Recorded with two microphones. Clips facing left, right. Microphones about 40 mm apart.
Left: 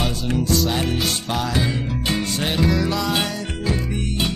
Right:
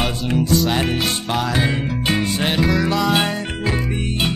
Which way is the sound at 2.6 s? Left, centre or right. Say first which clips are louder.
Right 1 dB; centre.